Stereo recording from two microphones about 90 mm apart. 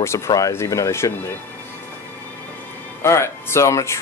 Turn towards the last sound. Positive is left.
turn(degrees=35)  # may be behind; listen again after turning